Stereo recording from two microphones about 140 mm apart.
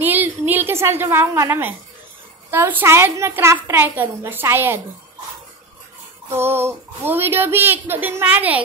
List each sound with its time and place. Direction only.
0.0 s a sound: 15° right (ahead or behind)
2.5 s a woman's voice: 15° right (ahead or behind)
6.2 s a woman's voice: 15° right (ahead or behind)